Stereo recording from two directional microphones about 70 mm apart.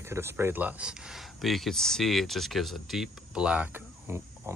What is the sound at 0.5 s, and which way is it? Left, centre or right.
Speech, right.